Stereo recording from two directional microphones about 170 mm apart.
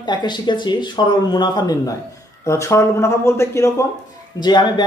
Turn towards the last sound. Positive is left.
turn(degrees=25)  # may be behind; listen again after turning